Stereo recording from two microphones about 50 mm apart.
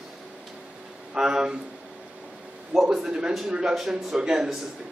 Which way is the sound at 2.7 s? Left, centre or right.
Centre.